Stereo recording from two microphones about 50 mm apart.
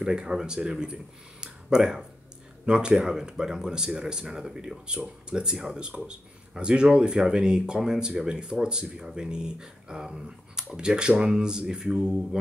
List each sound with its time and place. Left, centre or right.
0.0 s speech: centre